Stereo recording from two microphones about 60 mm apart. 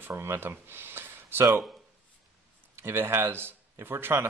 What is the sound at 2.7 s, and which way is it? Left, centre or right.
Speech, right.